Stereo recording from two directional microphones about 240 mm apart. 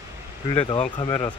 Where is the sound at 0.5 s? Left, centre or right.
Centre.